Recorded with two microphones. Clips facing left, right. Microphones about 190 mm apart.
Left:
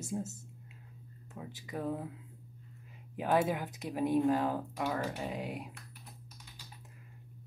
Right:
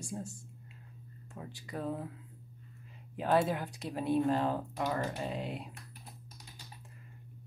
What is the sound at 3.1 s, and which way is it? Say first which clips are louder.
Speech: right 1 dB; 15° left (ahead or behind).